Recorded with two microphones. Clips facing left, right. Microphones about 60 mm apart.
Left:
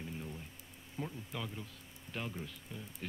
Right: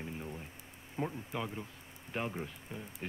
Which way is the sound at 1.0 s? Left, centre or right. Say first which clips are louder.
Right 5 dB; right.